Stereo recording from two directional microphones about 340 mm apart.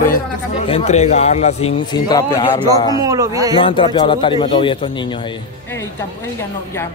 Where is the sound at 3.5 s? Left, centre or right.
Centre.